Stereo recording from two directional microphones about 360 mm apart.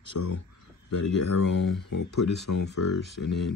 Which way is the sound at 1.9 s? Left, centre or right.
Left.